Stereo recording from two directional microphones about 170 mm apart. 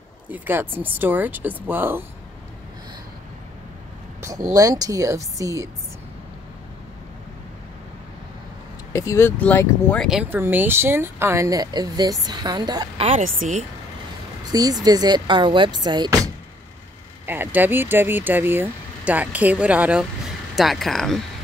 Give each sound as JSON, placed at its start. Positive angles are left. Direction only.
{"t": 0.3, "sound": "speech", "side_deg": -10}
{"t": 4.2, "sound": "speech", "side_deg": -20}
{"t": 8.9, "sound": "speech", "side_deg": 15}
{"t": 10.3, "sound": "speech", "side_deg": -10}
{"t": 13.2, "sound": "speech", "side_deg": -45}
{"t": 14.4, "sound": "speech", "side_deg": -20}
{"t": 17.3, "sound": "speech", "side_deg": -10}